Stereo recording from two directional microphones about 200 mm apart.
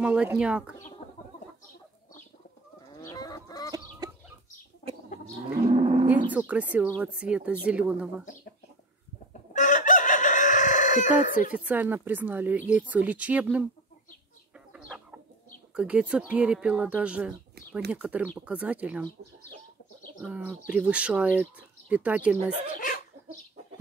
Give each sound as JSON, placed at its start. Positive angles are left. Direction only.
{"t": 0.0, "sound": "speech", "side_deg": -5}
{"t": 3.0, "sound": "chicken", "side_deg": 15}
{"t": 4.0, "sound": "chicken", "side_deg": -20}
{"t": 5.1, "sound": "a sound", "side_deg": 40}
{"t": 5.7, "sound": "cattle", "side_deg": -35}
{"t": 6.3, "sound": "speech", "side_deg": -5}
{"t": 9.3, "sound": "chicken", "side_deg": 40}
{"t": 11.5, "sound": "speech", "side_deg": -10}
{"t": 14.7, "sound": "chicken", "side_deg": -5}
{"t": 15.7, "sound": "speech", "side_deg": -5}
{"t": 20.2, "sound": "speech", "side_deg": -10}
{"t": 22.8, "sound": "dog", "side_deg": 40}